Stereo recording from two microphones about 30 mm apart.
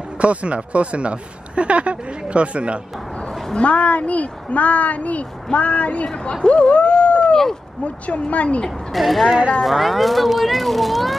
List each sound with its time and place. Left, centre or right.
0.2 s speech: right
3.5 s speech: left
7.1 s a sound: left
7.8 s speech: left
8.9 s a child's voice: centre